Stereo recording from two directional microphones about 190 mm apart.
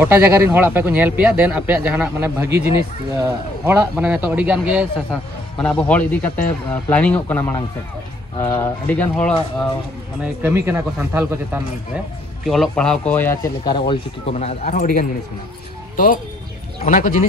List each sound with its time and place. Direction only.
0.0 s speech: 10° right (ahead or behind)
5.6 s speech: 5° left (ahead or behind)
10.2 s speech: 10° right (ahead or behind); by 13.9 s 25° left (ahead or behind)
14.4 s a man's voice: 35° left (ahead or behind)
16.8 s a man's voice: 40° left (ahead or behind)